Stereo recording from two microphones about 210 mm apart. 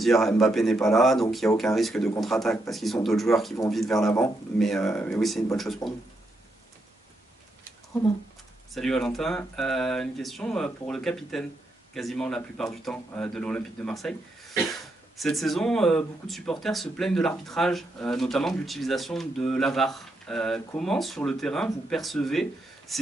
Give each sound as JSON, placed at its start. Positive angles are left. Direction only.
{"t": 0.0, "sound": "speech", "side_deg": 0}
{"t": 5.8, "sound": "speech", "side_deg": 15}
{"t": 8.7, "sound": "speech", "side_deg": 0}
{"t": 15.1, "sound": "speech", "side_deg": 0}